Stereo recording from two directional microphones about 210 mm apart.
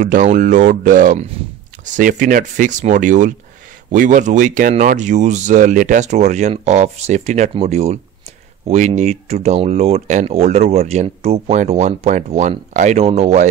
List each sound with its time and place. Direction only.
0.0 s speech: 35° right (ahead or behind)